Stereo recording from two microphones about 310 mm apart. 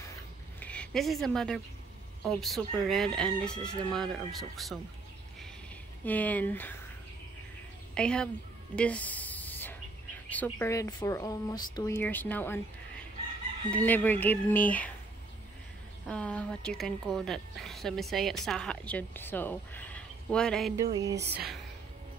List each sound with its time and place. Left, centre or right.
0.6 s speech: centre
6.0 s speech: centre
7.9 s a woman's voice: centre
8.7 s a sound: centre
10.3 s speech: centre
16.1 s speech: centre
20.7 s a sound: centre
21.2 s speech: right